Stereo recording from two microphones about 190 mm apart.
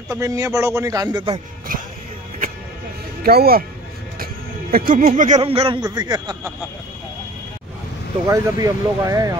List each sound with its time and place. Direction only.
0.1 s a man's voice: 15° right (ahead or behind)
1.7 s speech: 45° right (ahead or behind)
3.3 s speech: 55° right (ahead or behind)
4.7 s speech: 50° right (ahead or behind)
5.4 s a man's voice: 30° right (ahead or behind)
8.3 s a man's voice: 20° right (ahead or behind)